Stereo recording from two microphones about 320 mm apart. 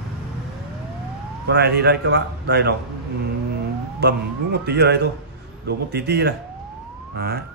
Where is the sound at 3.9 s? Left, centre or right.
Right.